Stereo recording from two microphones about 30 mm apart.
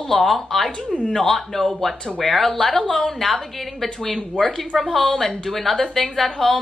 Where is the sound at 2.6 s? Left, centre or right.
Left.